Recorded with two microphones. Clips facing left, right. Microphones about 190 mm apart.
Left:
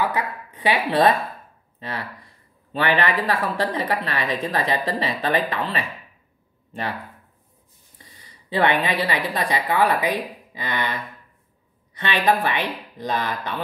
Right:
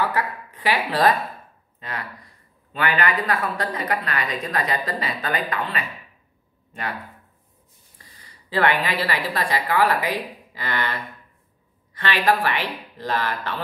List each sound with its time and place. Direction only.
0.0 s speech: 20° left (ahead or behind)
8.0 s a woman's voice: 20° left (ahead or behind)